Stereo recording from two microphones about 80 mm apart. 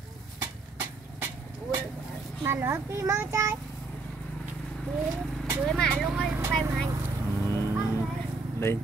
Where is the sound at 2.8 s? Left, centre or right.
Right.